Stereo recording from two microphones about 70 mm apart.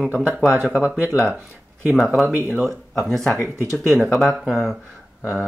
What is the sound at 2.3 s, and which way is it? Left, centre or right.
Speech, right.